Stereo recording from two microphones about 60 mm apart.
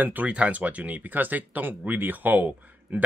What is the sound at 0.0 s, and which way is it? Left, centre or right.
Speech, right.